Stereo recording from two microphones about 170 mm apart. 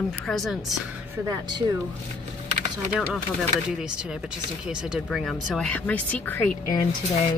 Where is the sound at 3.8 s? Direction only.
5° right (ahead or behind); by 6.5 s 10° left (ahead or behind).